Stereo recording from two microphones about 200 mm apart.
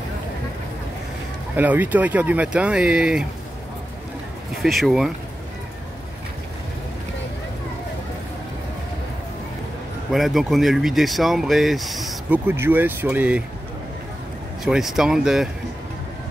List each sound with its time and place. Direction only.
1.5 s speech: 10° right (ahead or behind)
4.6 s speech: centre (ahead or behind)
10.1 s speech: centre (ahead or behind)
12.4 s speech: 10° right (ahead or behind)
14.6 s speech: centre (ahead or behind)